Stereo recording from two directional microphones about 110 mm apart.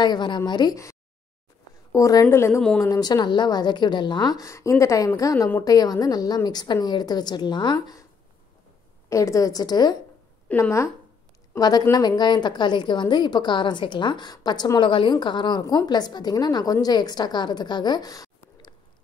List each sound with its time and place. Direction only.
0.0 s a woman's voice: 40° left (ahead or behind); by 2.6 s 25° left (ahead or behind)
2.8 s a woman's voice: 35° left (ahead or behind)
9.1 s a woman's voice: 30° left (ahead or behind)
10.5 s speech: 25° left (ahead or behind)
11.5 s a woman's voice: 40° left (ahead or behind)